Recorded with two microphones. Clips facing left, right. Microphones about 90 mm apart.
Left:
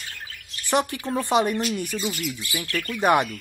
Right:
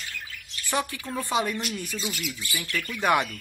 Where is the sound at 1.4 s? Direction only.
40° left (ahead or behind).